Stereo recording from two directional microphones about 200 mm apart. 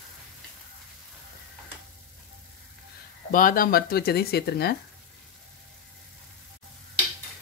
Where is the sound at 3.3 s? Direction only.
45° left (ahead or behind).